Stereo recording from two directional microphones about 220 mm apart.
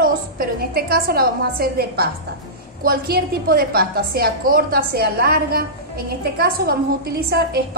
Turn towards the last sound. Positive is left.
turn(degrees=-45)  # may be behind; listen again after turning